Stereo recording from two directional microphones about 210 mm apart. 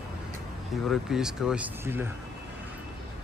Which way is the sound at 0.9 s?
Centre (ahead or behind).